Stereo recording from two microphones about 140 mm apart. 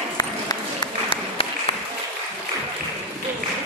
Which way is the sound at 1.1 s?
40° left (ahead or behind).